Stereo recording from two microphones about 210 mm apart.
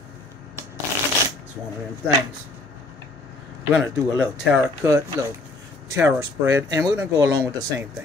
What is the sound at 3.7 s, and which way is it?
Speech, 5° right (ahead or behind).